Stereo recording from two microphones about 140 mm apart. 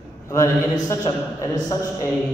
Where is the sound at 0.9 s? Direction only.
20° left (ahead or behind).